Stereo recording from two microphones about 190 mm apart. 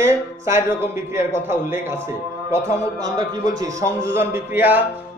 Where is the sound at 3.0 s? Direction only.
20° right (ahead or behind).